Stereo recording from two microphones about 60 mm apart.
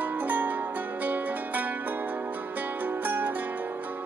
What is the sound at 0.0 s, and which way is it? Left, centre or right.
Music, right.